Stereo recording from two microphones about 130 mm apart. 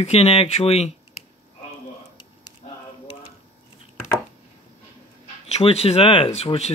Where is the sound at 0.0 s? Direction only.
50° left (ahead or behind).